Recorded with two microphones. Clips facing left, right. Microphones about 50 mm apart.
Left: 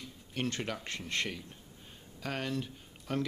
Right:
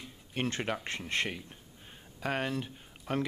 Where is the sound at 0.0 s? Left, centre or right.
Right.